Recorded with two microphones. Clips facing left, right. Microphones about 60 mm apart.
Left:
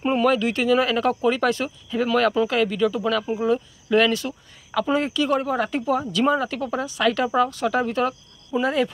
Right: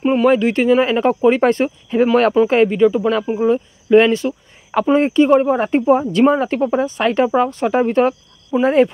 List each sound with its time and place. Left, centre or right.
0.0 s speech: centre
0.3 s speech: right